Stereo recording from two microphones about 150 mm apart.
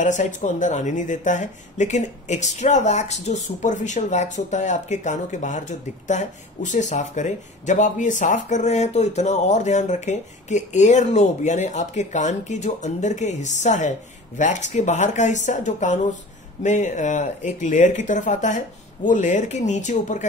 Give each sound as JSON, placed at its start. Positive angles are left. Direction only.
{"t": 0.0, "sound": "speech", "side_deg": 55}